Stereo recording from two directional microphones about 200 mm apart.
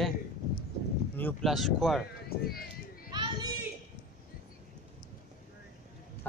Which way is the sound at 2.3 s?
50° left (ahead or behind).